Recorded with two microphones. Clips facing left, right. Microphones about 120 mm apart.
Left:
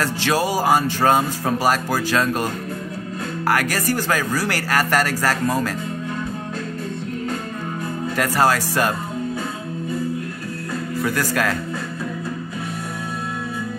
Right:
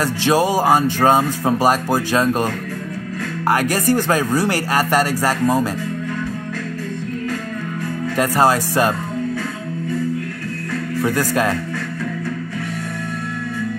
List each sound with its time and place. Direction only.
0.0 s speech: 20° right (ahead or behind)
3.4 s speech: 20° right (ahead or behind)
8.2 s speech: 20° right (ahead or behind)
11.0 s speech: 20° right (ahead or behind)